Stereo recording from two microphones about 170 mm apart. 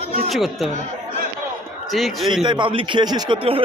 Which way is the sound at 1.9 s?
Centre (ahead or behind).